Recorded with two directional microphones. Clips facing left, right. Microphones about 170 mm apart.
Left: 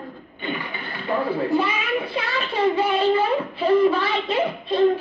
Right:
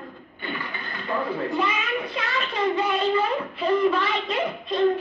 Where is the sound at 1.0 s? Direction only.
30° left (ahead or behind).